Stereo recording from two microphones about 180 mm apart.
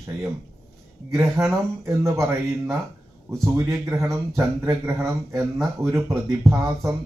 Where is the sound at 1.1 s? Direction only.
15° right (ahead or behind).